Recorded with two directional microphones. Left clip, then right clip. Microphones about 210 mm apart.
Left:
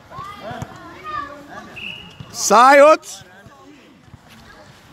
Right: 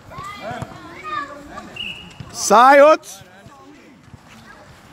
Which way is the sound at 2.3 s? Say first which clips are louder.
Even; centre (ahead or behind).